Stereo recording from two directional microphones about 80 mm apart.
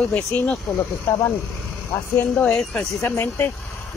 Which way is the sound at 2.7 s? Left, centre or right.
Centre.